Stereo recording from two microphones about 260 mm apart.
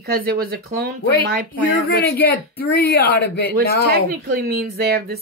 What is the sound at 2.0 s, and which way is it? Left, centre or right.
Speech, left.